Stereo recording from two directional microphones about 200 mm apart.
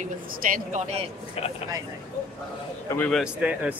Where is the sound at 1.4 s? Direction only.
30° left (ahead or behind).